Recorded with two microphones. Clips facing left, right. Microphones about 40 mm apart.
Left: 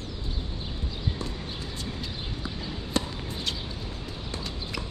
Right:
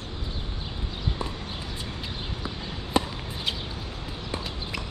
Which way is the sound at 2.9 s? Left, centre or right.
Centre.